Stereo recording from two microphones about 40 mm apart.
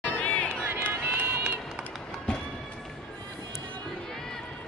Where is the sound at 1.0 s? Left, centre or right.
Right.